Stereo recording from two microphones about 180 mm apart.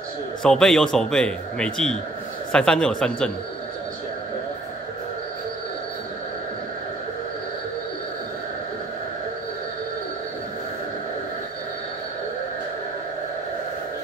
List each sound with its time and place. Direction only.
0.4 s a man's voice: 5° left (ahead or behind)